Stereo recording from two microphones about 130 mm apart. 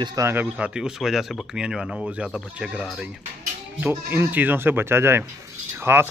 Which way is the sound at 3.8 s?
15° right (ahead or behind).